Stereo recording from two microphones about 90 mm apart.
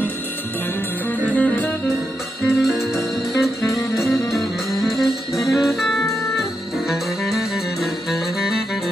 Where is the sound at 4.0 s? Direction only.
Centre (ahead or behind).